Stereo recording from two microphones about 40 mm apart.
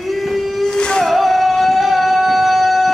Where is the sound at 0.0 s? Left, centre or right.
Centre.